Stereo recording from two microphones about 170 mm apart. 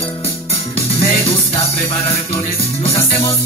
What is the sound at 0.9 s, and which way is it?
Music, 30° left (ahead or behind).